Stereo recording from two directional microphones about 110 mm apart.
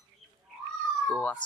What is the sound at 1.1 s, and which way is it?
Speech, 15° left (ahead or behind).